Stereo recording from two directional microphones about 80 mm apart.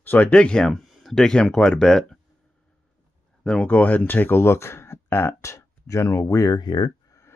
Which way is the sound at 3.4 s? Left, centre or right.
Centre.